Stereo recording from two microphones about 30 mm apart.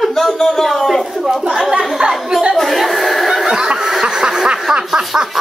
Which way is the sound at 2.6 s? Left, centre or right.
Centre.